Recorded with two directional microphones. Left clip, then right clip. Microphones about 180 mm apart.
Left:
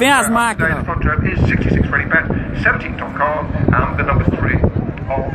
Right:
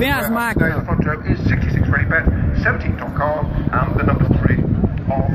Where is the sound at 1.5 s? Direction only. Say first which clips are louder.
Left 4 dB; centre (ahead or behind).